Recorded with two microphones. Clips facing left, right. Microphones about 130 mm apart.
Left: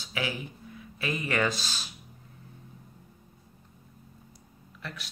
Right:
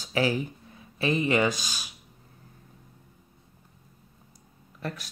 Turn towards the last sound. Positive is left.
turn(degrees=-40)  # may be behind; listen again after turning